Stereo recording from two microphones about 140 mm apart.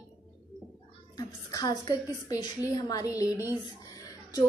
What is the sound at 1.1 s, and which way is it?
A woman's voice, 30° left (ahead or behind).